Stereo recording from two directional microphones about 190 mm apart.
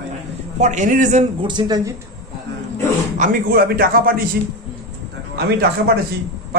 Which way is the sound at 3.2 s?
50° right (ahead or behind).